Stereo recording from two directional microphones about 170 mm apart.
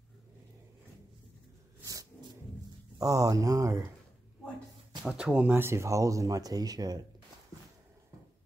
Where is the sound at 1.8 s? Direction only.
20° right (ahead or behind).